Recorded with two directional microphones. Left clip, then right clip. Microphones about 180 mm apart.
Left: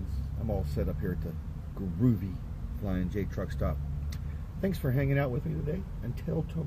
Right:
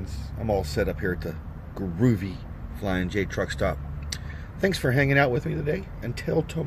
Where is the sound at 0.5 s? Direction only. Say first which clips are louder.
Right 10 dB; 25° right (ahead or behind).